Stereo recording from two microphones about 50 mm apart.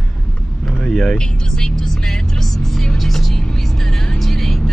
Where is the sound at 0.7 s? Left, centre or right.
Centre.